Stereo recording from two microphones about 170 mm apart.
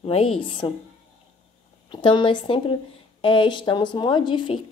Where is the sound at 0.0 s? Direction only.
35° left (ahead or behind).